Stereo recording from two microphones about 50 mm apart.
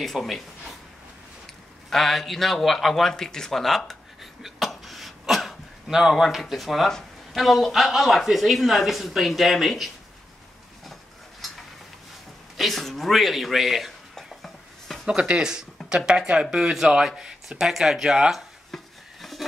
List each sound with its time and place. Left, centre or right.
0.0 s speech: centre
1.9 s speech: centre
4.4 s throat clearing: centre
5.9 s speech: centre
12.5 s speech: centre
14.1 s a sound: centre
15.0 s speech: right; by 18.2 s centre
18.7 s a sound: centre